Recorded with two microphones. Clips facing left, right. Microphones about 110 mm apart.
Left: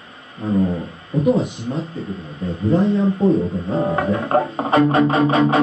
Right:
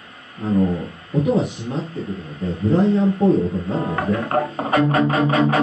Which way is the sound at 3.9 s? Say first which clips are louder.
Left 2 dB; 25° left (ahead or behind).